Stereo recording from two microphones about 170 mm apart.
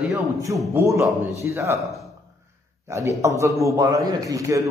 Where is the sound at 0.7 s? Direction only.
15° right (ahead or behind).